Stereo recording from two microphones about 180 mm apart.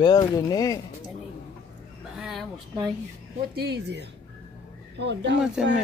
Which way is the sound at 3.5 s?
65° right (ahead or behind).